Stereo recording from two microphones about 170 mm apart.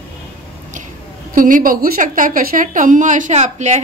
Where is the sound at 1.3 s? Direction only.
55° right (ahead or behind).